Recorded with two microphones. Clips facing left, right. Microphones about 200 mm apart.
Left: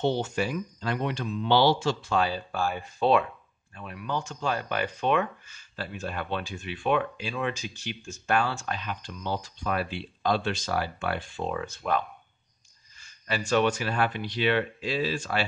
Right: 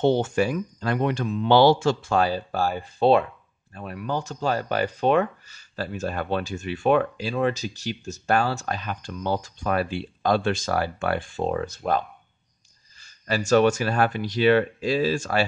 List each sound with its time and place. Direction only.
0.0 s speech: 50° right (ahead or behind)